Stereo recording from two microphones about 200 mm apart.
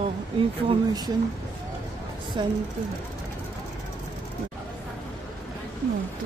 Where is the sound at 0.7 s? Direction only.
20° right (ahead or behind).